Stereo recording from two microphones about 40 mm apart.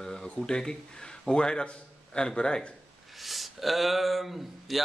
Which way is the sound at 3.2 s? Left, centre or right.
Centre.